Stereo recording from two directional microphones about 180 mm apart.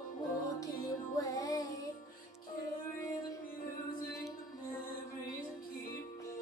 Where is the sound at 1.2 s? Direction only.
20° left (ahead or behind).